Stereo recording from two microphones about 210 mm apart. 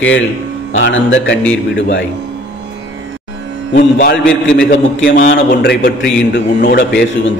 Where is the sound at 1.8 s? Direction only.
60° left (ahead or behind).